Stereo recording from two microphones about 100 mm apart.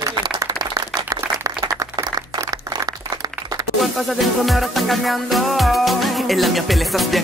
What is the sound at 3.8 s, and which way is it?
Music, centre (ahead or behind).